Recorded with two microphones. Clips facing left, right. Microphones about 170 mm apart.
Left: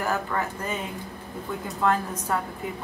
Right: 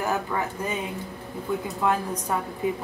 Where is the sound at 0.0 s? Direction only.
15° right (ahead or behind).